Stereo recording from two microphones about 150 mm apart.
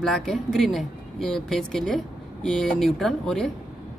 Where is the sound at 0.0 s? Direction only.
Centre (ahead or behind).